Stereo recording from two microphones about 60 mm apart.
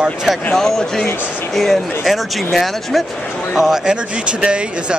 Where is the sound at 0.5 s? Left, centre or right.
Centre.